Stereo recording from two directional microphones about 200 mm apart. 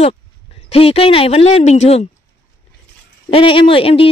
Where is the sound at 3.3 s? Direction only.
25° left (ahead or behind).